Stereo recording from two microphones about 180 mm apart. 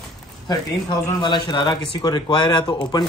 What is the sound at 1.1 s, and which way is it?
A man's voice, 25° left (ahead or behind).